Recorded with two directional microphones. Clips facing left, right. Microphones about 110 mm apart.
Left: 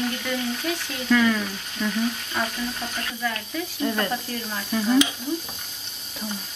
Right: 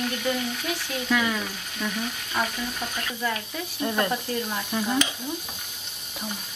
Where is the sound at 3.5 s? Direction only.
15° right (ahead or behind).